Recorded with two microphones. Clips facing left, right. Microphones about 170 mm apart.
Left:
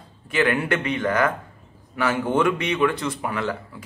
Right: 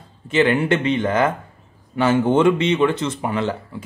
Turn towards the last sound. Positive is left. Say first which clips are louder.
# right 4 dB
turn(degrees=-25)  # may be behind; listen again after turning